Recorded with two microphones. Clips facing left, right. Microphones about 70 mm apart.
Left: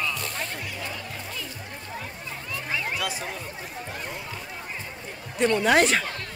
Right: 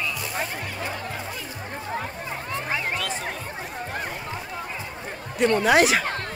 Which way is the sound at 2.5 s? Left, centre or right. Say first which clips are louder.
Right 2 dB; right.